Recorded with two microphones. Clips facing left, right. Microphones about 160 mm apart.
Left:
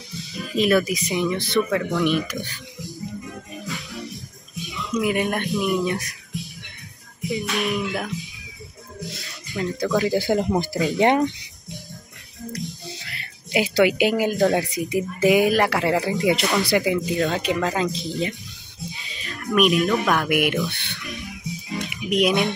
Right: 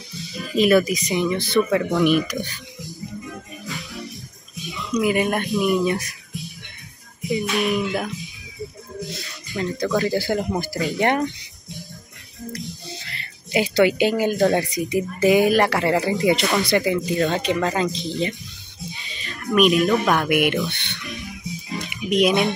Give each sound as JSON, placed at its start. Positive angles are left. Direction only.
{"t": 0.2, "sound": "speech", "side_deg": 0}
{"t": 3.6, "sound": "music", "side_deg": 0}
{"t": 4.6, "sound": "speech", "side_deg": 0}
{"t": 7.2, "sound": "speech", "side_deg": 0}
{"t": 10.0, "sound": "speech", "side_deg": 20}
{"t": 12.5, "sound": "music", "side_deg": 5}
{"t": 14.9, "sound": "speech", "side_deg": 5}
{"t": 21.8, "sound": "music", "side_deg": 0}